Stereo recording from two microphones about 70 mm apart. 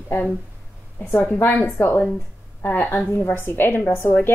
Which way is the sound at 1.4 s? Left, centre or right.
Left.